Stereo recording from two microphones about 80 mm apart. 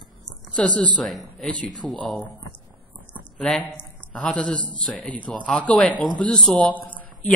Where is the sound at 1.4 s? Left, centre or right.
Centre.